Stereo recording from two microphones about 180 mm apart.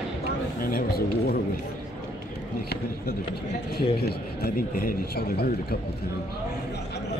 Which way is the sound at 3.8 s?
60° left (ahead or behind).